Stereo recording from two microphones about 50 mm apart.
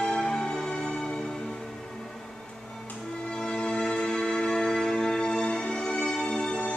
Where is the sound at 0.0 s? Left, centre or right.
Centre.